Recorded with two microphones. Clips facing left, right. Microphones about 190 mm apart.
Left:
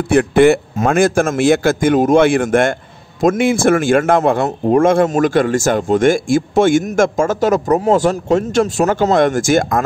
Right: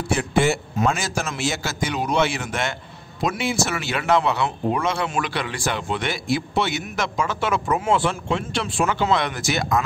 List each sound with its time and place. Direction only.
0.1 s speech: 60° left (ahead or behind)